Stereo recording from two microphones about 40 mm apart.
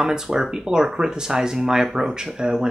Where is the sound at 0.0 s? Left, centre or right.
Centre.